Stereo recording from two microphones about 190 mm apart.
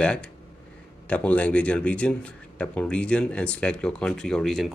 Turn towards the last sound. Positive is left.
turn(degrees=0)  # may be behind; listen again after turning